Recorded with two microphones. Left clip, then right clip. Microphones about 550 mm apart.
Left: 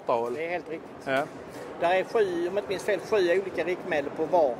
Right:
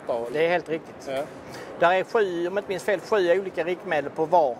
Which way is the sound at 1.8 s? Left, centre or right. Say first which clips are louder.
Right 3 dB; right.